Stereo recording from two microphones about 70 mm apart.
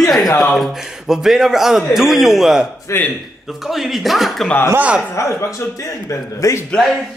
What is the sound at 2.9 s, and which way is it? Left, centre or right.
Speech, left.